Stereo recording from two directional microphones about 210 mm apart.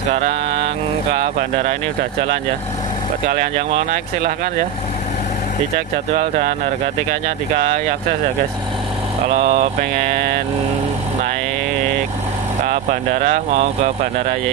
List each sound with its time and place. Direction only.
0.1 s mantra: 30° right (ahead or behind)
1.2 s speech: 35° right (ahead or behind)
6.1 s speech: 35° right (ahead or behind)
9.3 s vehicle: 30° right (ahead or behind)
12.6 s speech: 40° right (ahead or behind)